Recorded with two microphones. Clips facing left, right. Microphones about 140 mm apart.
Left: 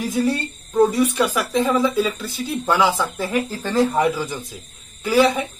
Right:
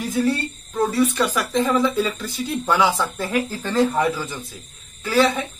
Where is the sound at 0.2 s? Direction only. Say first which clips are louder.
Right 1 dB; 15° left (ahead or behind).